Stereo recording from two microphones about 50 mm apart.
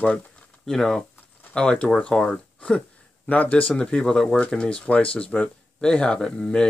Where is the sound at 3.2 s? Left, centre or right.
Left.